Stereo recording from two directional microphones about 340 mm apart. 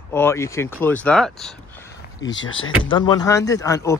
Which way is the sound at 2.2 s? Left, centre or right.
Left.